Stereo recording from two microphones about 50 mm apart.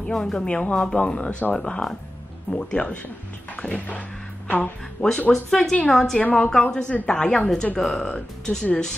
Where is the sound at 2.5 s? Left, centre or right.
Left.